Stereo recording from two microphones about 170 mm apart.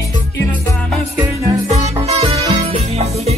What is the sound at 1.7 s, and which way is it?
Music, 40° right (ahead or behind).